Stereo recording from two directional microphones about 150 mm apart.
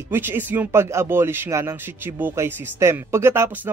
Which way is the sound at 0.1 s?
15° right (ahead or behind).